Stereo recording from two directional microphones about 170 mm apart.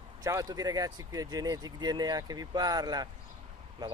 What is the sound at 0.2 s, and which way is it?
Speech, 20° right (ahead or behind).